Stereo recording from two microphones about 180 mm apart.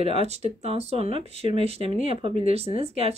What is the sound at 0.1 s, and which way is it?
Speech, 35° right (ahead or behind).